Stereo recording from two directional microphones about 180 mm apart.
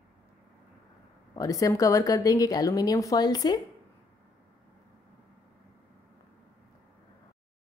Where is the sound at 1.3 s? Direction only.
20° left (ahead or behind).